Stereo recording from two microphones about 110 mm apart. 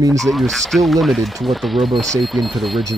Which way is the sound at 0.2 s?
Centre (ahead or behind).